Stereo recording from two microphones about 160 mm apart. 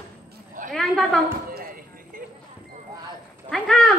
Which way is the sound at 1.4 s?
60° right (ahead or behind).